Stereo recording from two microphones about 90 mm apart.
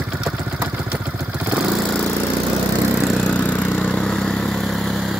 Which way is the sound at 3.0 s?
Centre (ahead or behind).